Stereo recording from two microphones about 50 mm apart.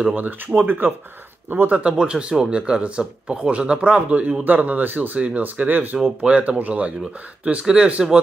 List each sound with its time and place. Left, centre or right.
0.1 s speech: right
1.8 s speech: right
6.2 s speech: right